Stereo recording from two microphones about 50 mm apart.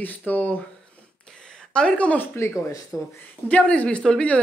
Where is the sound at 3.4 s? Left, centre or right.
Left.